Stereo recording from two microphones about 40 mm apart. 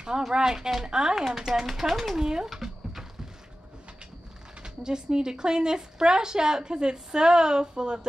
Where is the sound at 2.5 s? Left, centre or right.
Centre.